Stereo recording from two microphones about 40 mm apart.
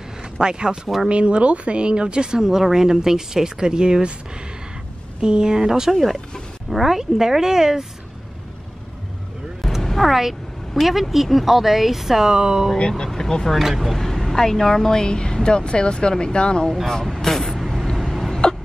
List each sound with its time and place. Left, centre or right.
0.2 s speech: right
2.4 s speech: centre
5.2 s speech: right
5.9 s speech: centre
9.6 s vehicle: centre
10.7 s speech: centre
12.7 s speech: left
16.6 s vehicle: centre
17.9 s a sound: centre